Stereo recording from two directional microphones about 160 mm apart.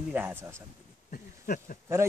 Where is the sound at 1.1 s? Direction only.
60° left (ahead or behind).